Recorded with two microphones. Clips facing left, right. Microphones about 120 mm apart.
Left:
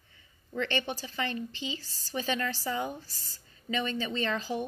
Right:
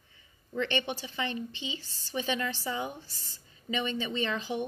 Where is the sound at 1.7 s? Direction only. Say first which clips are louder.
Even; 20° right (ahead or behind).